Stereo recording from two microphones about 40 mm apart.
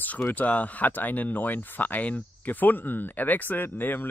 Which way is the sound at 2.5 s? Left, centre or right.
Left.